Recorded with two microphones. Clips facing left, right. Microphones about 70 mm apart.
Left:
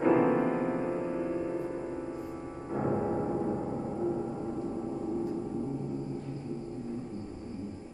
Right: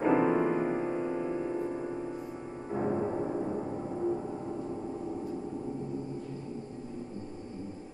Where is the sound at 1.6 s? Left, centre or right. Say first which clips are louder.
Right 1 dB; centre.